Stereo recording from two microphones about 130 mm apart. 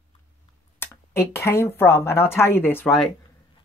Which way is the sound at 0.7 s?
20° left (ahead or behind).